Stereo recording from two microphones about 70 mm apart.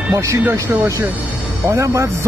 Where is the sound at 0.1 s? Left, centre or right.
Right.